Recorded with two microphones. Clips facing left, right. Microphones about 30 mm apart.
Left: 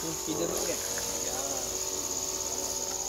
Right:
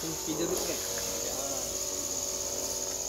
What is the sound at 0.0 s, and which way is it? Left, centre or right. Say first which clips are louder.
Insect: left 1 dB; centre.